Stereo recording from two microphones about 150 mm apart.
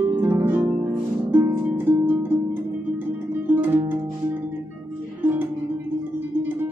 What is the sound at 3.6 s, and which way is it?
Music, 15° right (ahead or behind).